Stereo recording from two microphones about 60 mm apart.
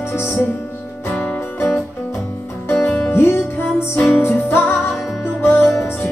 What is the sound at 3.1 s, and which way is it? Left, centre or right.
Music, left.